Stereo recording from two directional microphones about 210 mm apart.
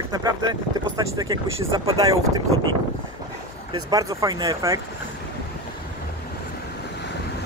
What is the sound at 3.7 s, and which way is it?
Speech, 15° right (ahead or behind).